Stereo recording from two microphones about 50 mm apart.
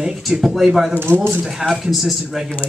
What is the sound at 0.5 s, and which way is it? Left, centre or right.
Speech, centre.